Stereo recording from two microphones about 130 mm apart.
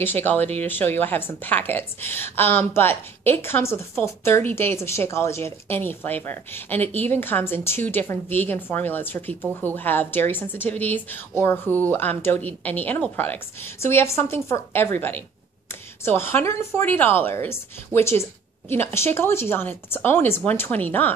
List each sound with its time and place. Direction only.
0.0 s a woman's voice: 15° left (ahead or behind)